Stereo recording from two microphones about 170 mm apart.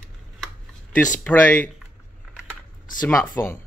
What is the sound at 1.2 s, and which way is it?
Speech, 10° left (ahead or behind).